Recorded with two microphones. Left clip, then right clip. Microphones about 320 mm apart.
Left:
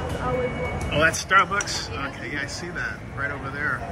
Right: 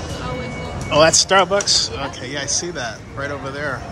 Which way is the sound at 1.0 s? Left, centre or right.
Centre.